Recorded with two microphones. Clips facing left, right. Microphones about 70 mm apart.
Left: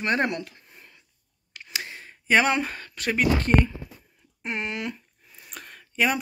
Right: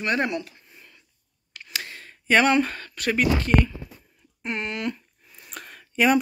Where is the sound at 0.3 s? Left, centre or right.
Left.